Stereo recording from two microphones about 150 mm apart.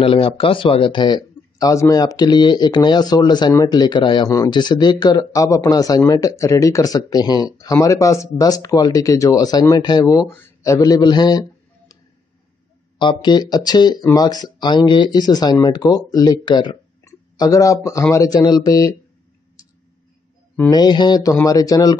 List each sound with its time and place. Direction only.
0.0 s speech: 35° left (ahead or behind)
13.0 s speech: 30° left (ahead or behind)
20.7 s speech: 30° left (ahead or behind)